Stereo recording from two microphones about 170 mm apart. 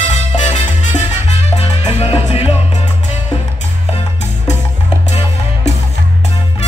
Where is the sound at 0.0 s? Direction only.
40° left (ahead or behind).